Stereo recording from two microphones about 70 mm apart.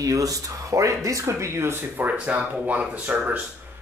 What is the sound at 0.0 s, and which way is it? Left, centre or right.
Speech, right.